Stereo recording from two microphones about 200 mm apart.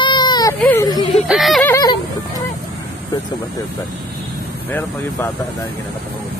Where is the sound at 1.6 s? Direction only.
15° left (ahead or behind).